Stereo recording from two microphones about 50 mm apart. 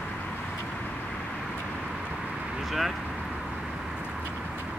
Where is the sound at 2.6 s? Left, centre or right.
Centre.